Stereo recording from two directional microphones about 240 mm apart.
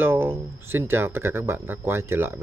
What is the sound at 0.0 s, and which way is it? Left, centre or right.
Speech, centre.